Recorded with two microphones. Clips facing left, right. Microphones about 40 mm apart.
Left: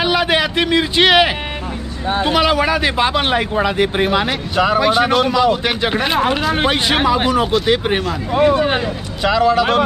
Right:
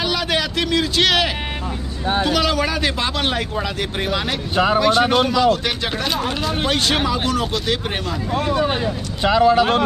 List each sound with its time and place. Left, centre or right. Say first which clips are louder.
0.0 s speech: left 5 dB; left
6.9 s speech: left 5 dB; centre
9.2 s speech: even; left